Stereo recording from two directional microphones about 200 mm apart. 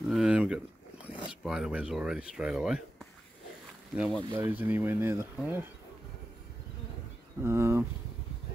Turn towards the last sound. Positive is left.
turn(degrees=-10)  # may be behind; listen again after turning